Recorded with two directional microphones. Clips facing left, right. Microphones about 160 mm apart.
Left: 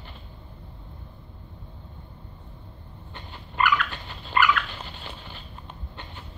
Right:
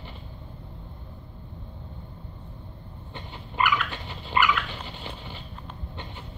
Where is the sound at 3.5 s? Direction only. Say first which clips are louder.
Left 1 dB; 15° right (ahead or behind).